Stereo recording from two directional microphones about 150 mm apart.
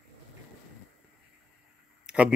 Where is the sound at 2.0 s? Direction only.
5° right (ahead or behind).